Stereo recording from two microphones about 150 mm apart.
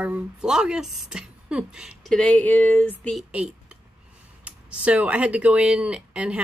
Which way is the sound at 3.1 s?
5° right (ahead or behind).